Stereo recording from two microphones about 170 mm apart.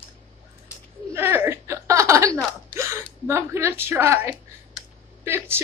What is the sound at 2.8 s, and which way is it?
Gasp, 15° right (ahead or behind).